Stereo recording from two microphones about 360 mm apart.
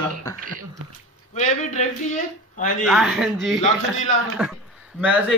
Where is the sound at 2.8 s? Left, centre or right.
Centre.